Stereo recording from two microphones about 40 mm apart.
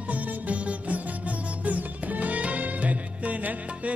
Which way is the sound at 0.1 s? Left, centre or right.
Right.